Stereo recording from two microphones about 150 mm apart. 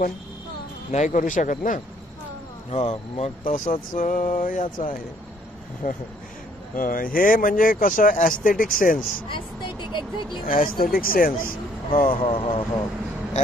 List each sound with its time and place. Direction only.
0.9 s speech: 55° left (ahead or behind)
2.7 s speech: 45° left (ahead or behind)
3.4 s speech: 55° left (ahead or behind)
5.8 s speech: 65° left (ahead or behind)
9.3 s speech: 30° left (ahead or behind)
10.5 s speech: 70° left (ahead or behind)
12.3 s speech: 35° left (ahead or behind)